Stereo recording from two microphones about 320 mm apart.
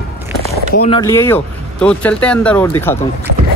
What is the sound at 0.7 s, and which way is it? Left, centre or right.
Speech, centre.